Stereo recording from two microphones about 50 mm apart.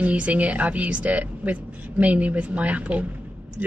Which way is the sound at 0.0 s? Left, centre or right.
Right.